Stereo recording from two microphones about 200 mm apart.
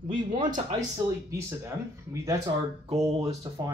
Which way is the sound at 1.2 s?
15° right (ahead or behind).